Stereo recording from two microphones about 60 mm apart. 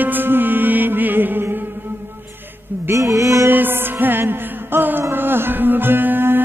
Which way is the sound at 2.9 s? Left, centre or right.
Right.